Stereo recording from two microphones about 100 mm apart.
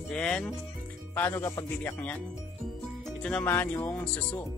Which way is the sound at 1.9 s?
15° left (ahead or behind).